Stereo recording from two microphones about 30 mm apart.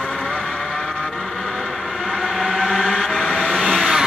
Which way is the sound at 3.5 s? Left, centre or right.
Centre.